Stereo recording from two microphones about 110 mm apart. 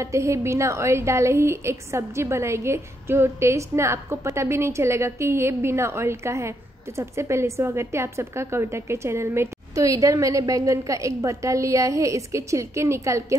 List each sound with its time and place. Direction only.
0.0 s a woman's voice: 25° right (ahead or behind)